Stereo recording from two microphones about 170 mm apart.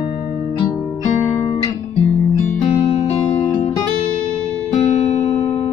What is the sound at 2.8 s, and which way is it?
Music, 35° left (ahead or behind).